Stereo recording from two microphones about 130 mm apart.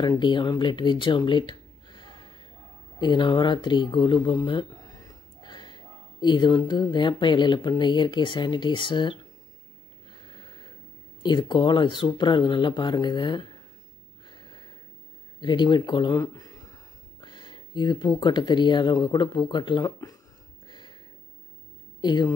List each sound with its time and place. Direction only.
0.0 s speech: 35° left (ahead or behind)
11.2 s speech: 35° left (ahead or behind)
14.2 s a sound: 35° left (ahead or behind)
18.2 s speech: 35° left (ahead or behind)
20.6 s a sound: 35° left (ahead or behind)
22.0 s a woman's voice: 35° left (ahead or behind)